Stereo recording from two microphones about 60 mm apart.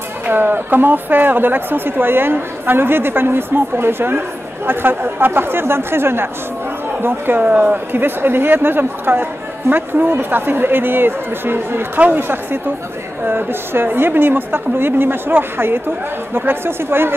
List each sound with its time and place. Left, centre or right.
0.3 s speech: right